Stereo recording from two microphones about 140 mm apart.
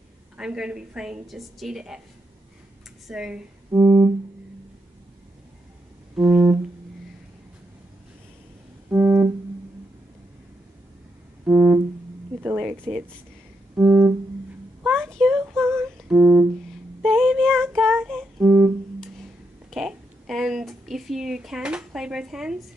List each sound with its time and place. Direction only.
0.4 s a woman's voice: 5° right (ahead or behind)
3.1 s a woman's voice: 5° right (ahead or behind)
3.7 s music: 15° right (ahead or behind)
6.1 s music: 10° right (ahead or behind)
8.9 s organ: 15° right (ahead or behind)
11.4 s music: 15° right (ahead or behind)
12.4 s a sound: 10° right (ahead or behind)
13.7 s music: 15° right (ahead or behind)
14.9 s a sound: 5° left (ahead or behind)
15.4 s a sound: 15° right (ahead or behind)
16.1 s music: 10° right (ahead or behind)
17.0 s female singing: 5° left (ahead or behind)
18.4 s music: 15° right (ahead or behind)
19.7 s a sound: 5° right (ahead or behind)